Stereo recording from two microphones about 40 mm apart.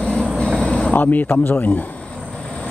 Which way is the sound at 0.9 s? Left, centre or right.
Left.